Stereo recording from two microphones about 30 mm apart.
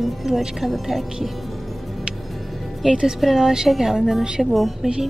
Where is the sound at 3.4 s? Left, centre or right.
Centre.